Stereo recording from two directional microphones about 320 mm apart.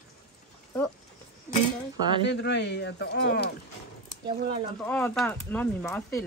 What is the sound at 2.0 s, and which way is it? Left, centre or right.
Speech, centre.